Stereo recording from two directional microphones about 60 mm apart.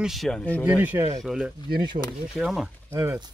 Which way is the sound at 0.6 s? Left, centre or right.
Right.